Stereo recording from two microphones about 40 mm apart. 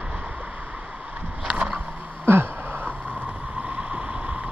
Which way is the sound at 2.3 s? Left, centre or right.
Right.